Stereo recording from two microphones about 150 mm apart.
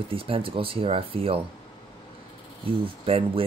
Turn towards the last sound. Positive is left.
turn(degrees=-35)  # may be behind; listen again after turning